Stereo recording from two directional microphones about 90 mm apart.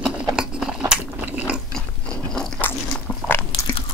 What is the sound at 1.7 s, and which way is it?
Gears, 5° left (ahead or behind).